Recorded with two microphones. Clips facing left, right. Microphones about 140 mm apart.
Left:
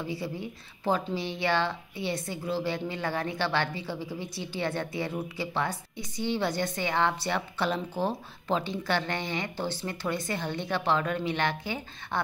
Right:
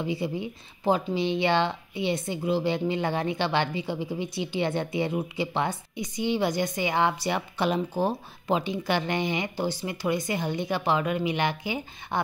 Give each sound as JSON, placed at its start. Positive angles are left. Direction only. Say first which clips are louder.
{"t": 0.0, "sound": "speech", "louder": "right 5 dB", "side_deg": -20}